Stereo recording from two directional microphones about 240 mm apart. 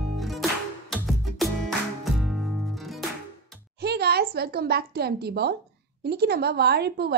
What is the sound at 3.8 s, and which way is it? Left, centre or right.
A woman's voice, right.